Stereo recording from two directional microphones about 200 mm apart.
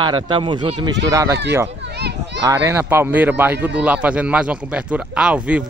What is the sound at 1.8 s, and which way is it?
Children playing, 55° right (ahead or behind).